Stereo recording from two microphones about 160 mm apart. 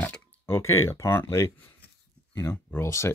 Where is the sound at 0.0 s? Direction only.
10° left (ahead or behind).